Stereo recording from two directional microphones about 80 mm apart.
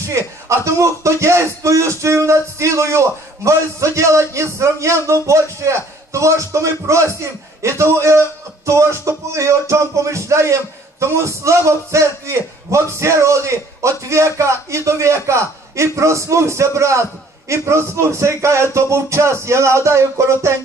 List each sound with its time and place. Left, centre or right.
0.5 s music: right